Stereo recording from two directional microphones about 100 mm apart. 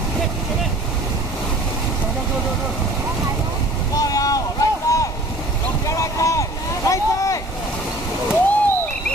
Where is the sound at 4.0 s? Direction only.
35° left (ahead or behind).